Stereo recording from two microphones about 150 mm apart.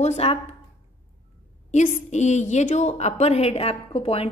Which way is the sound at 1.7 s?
55° left (ahead or behind).